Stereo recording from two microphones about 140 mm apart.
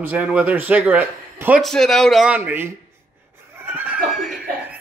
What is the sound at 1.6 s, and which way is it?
Speech, 5° left (ahead or behind).